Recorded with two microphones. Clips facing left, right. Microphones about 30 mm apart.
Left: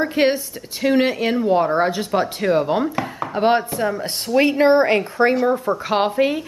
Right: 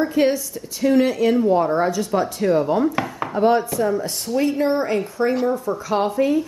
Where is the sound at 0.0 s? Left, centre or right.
Left.